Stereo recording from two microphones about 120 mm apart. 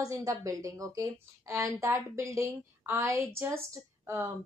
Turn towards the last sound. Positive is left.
turn(degrees=-20)  # may be behind; listen again after turning